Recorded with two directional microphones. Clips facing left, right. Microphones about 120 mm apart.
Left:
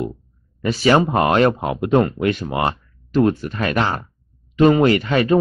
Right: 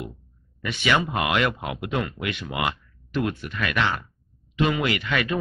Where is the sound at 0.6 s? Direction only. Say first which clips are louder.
Left 8 dB; 35° left (ahead or behind).